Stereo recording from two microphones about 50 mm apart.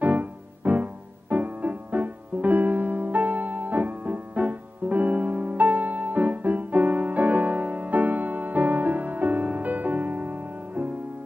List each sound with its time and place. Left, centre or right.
0.0 s music: right